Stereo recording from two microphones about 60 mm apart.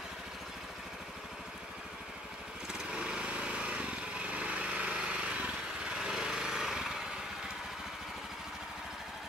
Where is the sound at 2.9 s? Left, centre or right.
Centre.